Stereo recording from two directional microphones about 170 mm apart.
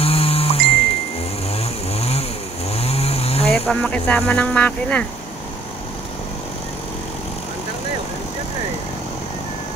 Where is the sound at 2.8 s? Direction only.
35° left (ahead or behind).